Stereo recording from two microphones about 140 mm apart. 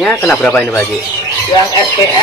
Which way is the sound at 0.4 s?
5° left (ahead or behind).